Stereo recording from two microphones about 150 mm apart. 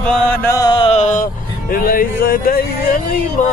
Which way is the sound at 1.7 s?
70° left (ahead or behind).